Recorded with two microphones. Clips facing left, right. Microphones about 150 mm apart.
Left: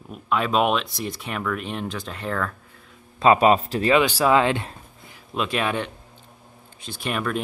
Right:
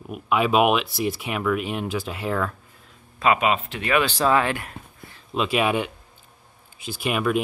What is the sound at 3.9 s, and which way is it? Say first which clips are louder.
Speech: left 2 dB; 10° left (ahead or behind).